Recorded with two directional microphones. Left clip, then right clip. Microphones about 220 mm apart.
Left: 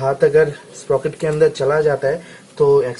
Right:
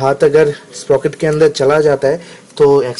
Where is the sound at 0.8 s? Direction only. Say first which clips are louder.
Right 5 dB; 35° right (ahead or behind).